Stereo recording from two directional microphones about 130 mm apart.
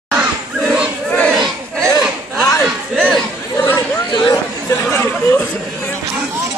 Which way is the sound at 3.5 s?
20° left (ahead or behind).